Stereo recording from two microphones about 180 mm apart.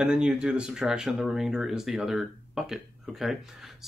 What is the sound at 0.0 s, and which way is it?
Speech, 5° right (ahead or behind).